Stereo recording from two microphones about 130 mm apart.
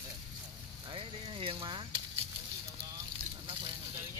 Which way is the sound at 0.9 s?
45° right (ahead or behind).